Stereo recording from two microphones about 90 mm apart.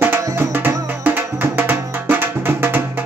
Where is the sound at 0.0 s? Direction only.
25° right (ahead or behind).